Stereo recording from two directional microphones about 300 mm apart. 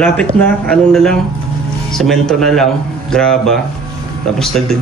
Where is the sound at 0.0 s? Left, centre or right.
Centre.